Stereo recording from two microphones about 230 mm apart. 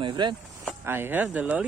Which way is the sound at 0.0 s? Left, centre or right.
Centre.